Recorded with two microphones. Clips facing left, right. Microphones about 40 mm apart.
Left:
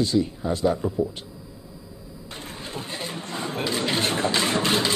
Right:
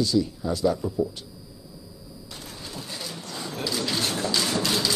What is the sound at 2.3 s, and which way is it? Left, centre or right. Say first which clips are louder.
Speech: left 4 dB; left.